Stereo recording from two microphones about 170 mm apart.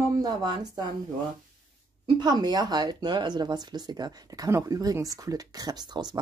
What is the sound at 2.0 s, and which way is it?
Speech, 25° right (ahead or behind).